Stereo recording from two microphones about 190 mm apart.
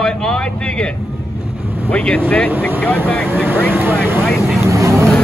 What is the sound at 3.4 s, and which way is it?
Speech, 10° right (ahead or behind).